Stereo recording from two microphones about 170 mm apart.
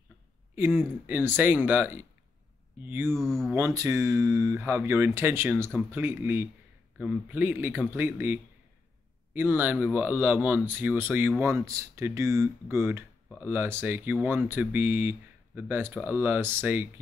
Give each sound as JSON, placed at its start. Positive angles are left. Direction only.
{"t": 0.6, "sound": "speech", "side_deg": -10}
{"t": 3.1, "sound": "speech", "side_deg": 0}
{"t": 3.5, "sound": "speech", "side_deg": -20}